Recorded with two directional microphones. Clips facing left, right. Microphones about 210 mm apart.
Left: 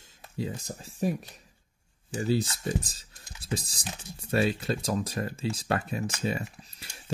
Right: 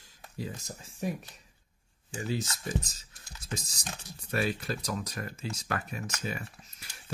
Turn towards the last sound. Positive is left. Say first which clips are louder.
# left 4 dB
turn(degrees=30)  # may be behind; listen again after turning